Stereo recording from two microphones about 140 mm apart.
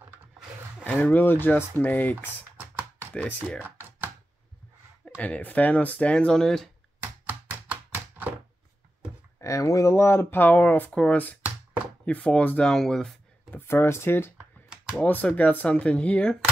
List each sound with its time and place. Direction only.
0.8 s speech: 15° left (ahead or behind)
5.0 s speech: 10° left (ahead or behind)
7.0 s chopping: 15° right (ahead or behind)
9.4 s speech: 25° left (ahead or behind); by 13.6 s 5° left (ahead or behind)
13.7 s speech: 15° left (ahead or behind)